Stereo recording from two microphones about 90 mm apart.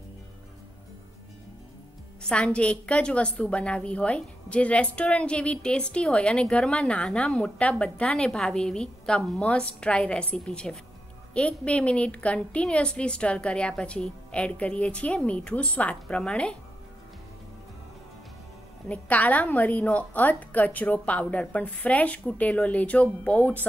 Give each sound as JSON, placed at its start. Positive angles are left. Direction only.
{"t": 2.2, "sound": "a woman's voice", "side_deg": 15}
{"t": 18.9, "sound": "a woman's voice", "side_deg": 15}